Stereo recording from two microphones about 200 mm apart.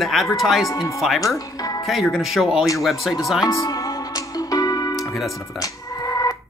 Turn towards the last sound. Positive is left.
turn(degrees=15)  # may be behind; listen again after turning